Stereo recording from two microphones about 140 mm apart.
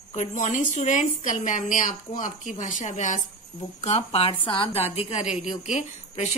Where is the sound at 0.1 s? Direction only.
60° left (ahead or behind).